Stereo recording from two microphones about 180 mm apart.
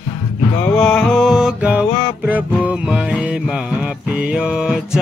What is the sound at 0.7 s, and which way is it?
Music, centre (ahead or behind).